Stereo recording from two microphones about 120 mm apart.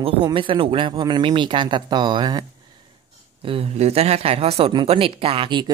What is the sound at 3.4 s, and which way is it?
Speech, 50° right (ahead or behind).